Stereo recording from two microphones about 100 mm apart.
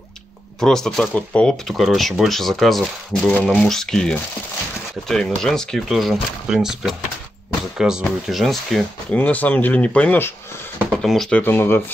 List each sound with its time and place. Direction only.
0.6 s speech: 5° left (ahead or behind)
1.7 s speech: centre (ahead or behind)
9.1 s speech: 15° left (ahead or behind)
11.0 s speech: 5° left (ahead or behind)
11.3 s speech: 20° left (ahead or behind)